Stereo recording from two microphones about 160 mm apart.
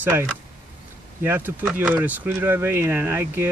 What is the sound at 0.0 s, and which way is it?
Speech, 15° right (ahead or behind).